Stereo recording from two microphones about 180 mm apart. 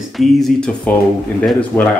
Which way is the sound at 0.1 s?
Centre (ahead or behind).